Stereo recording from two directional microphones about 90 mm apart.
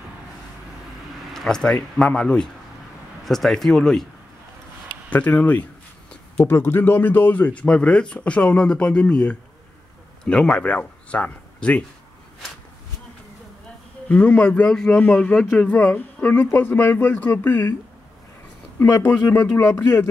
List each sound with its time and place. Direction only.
1.3 s speech: 5° left (ahead or behind)
5.1 s speech: 20° left (ahead or behind)
14.0 s speech: 15° left (ahead or behind)
18.8 s speech: 25° left (ahead or behind)